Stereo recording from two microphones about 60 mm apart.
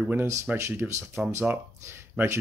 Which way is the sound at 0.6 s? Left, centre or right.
Right.